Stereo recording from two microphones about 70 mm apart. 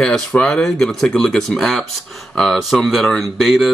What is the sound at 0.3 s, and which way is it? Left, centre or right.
Speech, centre.